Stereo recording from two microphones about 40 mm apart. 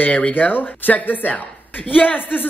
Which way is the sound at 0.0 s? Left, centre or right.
Left.